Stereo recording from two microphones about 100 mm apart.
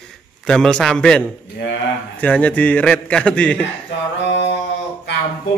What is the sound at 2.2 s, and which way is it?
A man's voice, 15° left (ahead or behind).